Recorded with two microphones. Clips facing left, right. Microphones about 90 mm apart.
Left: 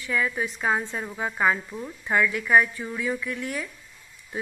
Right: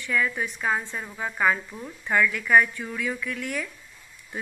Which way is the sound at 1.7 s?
5° left (ahead or behind).